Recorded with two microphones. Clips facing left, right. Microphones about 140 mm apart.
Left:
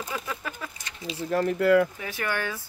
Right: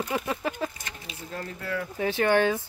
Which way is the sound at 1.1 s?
75° left (ahead or behind).